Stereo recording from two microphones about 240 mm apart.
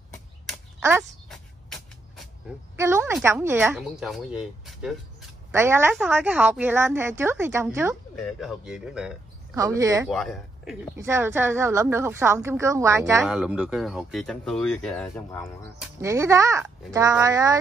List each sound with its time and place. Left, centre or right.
0.7 s a sound: centre
1.3 s vehicle: centre
2.7 s a woman's voice: centre
9.6 s a woman's voice: centre
10.0 s speech: centre
11.0 s a woman's voice: centre
16.0 s a woman's voice: centre